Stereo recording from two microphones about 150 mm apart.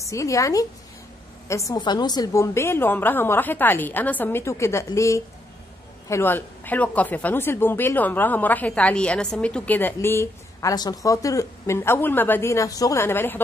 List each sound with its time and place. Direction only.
0.0 s a woman's voice: 20° left (ahead or behind)